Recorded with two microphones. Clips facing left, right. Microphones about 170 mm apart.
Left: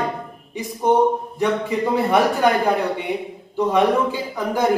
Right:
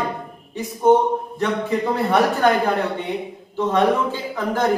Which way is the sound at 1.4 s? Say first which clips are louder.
Left 2 dB; 10° left (ahead or behind).